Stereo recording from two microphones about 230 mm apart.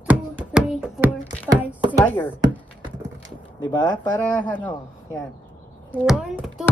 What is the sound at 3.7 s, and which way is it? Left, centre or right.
Speech, centre.